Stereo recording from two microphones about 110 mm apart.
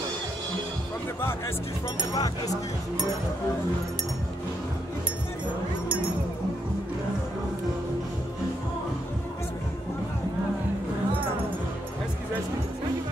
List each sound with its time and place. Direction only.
2.1 s speech: 35° left (ahead or behind)